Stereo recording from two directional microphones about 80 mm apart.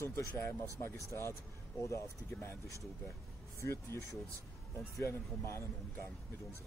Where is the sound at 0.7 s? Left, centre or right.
Left.